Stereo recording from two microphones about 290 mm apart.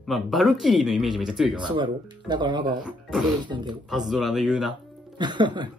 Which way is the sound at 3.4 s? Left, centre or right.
Centre.